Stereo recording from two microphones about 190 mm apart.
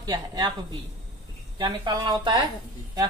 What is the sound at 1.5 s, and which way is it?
Speech, 25° right (ahead or behind).